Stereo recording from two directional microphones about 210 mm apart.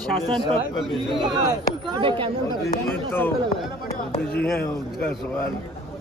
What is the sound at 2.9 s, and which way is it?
Speech, 10° left (ahead or behind).